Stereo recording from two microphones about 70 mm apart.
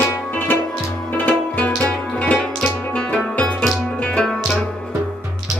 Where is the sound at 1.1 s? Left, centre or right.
Left.